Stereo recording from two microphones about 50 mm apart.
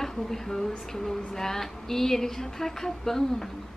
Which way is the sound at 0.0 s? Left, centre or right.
Centre.